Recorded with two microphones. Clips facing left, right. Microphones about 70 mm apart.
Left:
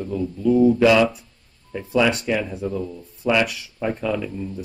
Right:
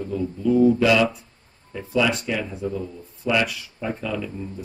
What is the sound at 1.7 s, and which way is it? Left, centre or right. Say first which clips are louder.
Speech: left 2 dB; left.